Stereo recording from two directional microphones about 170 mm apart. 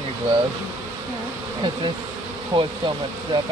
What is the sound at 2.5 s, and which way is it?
Speech, 25° right (ahead or behind).